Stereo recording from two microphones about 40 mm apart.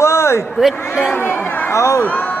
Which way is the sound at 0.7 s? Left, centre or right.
Left.